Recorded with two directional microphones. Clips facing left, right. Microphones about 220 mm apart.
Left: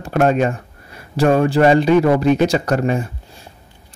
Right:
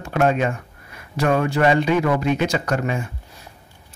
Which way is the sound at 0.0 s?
40° left (ahead or behind).